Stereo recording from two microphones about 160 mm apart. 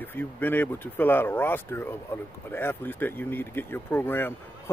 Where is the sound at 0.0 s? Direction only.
10° left (ahead or behind).